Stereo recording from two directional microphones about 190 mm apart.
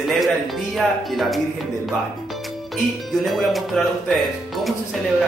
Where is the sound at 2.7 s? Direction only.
Centre (ahead or behind).